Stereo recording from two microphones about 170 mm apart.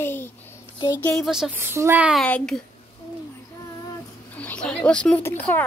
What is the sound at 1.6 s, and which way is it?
Speech, 15° right (ahead or behind).